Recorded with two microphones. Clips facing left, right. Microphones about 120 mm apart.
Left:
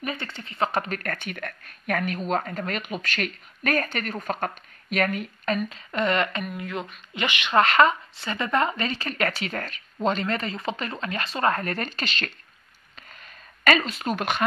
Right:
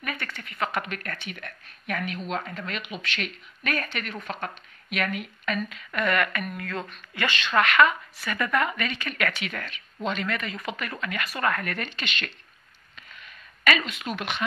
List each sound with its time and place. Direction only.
0.0 s a woman's voice: 25° left (ahead or behind)
7.5 s a woman's voice: 30° left (ahead or behind)
13.1 s a sound: 40° left (ahead or behind)